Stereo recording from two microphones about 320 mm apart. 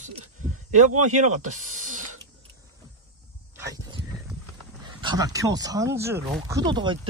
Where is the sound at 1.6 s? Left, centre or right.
Right.